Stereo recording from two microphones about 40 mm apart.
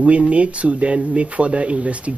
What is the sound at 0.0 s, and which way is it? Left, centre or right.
Speech, right.